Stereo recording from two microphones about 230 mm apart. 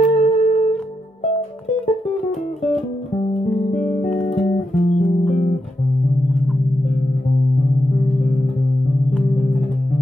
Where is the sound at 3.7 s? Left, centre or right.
Left.